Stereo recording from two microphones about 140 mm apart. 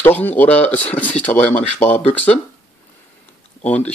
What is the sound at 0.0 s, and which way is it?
Speech, 10° left (ahead or behind).